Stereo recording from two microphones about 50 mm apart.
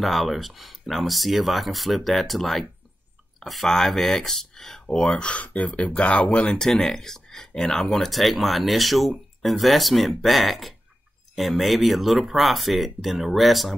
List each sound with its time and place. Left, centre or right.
0.0 s speech: centre
4.8 s speech: centre
6.4 s speech: centre